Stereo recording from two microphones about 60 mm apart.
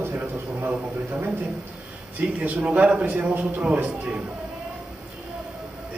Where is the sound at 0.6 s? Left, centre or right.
Right.